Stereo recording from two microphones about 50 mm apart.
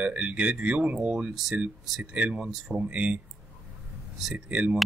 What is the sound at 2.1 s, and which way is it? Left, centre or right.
Speech, right.